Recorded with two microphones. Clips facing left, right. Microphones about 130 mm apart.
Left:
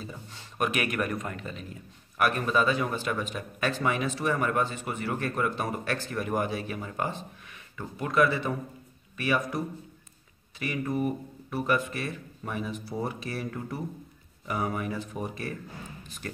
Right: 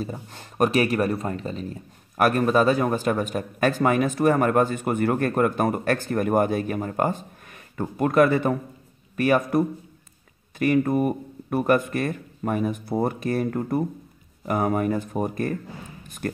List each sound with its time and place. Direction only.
0.0 s a man's voice: 45° right (ahead or behind)
0.7 s a man's voice: 35° right (ahead or behind); by 15.5 s 50° right (ahead or behind)